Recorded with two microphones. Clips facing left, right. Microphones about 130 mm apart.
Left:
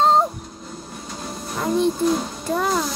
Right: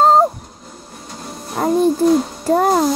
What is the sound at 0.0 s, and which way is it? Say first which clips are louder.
Train: right 5 dB; 45° right (ahead or behind).